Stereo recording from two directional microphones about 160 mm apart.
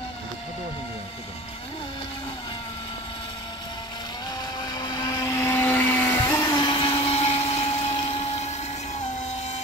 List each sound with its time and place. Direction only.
4.6 s vehicle: 25° left (ahead or behind)
6.5 s blender: 30° left (ahead or behind); by 9.0 s 45° left (ahead or behind)